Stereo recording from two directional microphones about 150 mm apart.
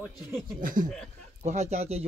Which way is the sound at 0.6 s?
65° right (ahead or behind).